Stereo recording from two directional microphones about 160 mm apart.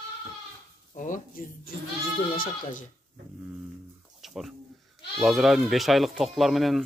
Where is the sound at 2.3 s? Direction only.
60° left (ahead or behind).